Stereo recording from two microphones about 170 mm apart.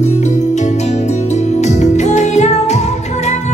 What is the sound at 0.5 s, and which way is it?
Music, 45° left (ahead or behind).